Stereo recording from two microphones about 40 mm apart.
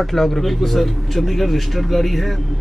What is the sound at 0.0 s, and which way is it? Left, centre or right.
A man's voice, centre.